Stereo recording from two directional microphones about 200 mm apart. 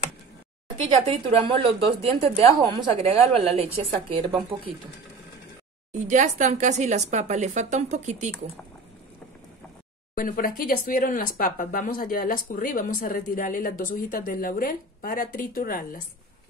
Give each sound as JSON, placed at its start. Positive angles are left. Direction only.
{"t": 1.0, "sound": "a woman's voice", "side_deg": -25}
{"t": 5.9, "sound": "speech", "side_deg": -40}
{"t": 10.1, "sound": "speech", "side_deg": 45}